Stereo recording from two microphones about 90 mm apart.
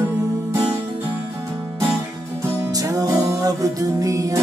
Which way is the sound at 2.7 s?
40° right (ahead or behind).